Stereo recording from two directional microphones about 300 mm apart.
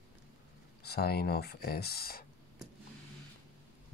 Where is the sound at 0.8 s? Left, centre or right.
Left.